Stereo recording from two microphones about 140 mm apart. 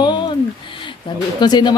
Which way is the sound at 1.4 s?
30° left (ahead or behind).